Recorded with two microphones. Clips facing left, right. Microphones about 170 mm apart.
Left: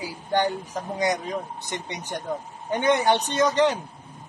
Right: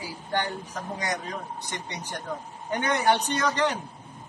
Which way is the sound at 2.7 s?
25° left (ahead or behind).